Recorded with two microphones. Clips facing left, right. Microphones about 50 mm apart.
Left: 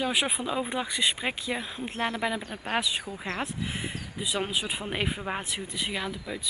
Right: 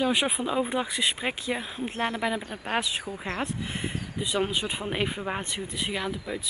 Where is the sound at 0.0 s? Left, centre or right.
Centre.